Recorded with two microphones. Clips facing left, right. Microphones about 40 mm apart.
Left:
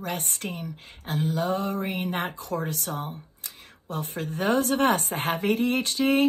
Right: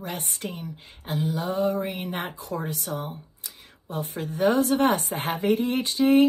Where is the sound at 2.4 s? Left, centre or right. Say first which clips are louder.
Left 1 dB; left.